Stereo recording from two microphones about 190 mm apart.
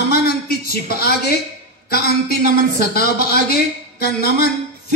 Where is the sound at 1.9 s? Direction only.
55° left (ahead or behind).